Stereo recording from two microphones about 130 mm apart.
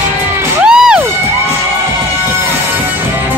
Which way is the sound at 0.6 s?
5° right (ahead or behind).